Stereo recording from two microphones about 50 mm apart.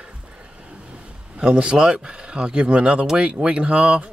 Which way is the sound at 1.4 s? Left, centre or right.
Right.